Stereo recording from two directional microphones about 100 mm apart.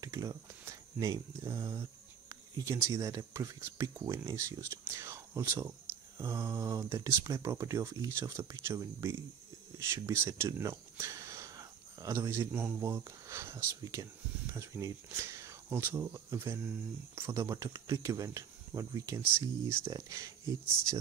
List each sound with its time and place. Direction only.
0.0 s speech: 35° right (ahead or behind)
19.9 s speech: 35° right (ahead or behind)